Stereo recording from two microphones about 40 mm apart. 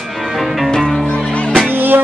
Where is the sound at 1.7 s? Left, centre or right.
Right.